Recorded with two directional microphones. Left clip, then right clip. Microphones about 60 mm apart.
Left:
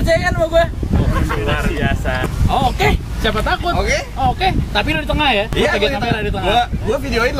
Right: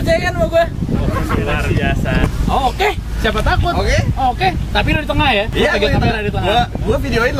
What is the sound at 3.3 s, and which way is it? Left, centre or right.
Speech, centre.